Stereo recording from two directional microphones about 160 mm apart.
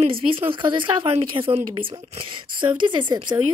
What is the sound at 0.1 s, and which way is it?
A woman's voice, 35° right (ahead or behind).